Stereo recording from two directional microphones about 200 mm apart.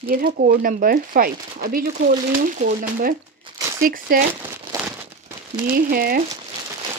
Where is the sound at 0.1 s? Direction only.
45° right (ahead or behind).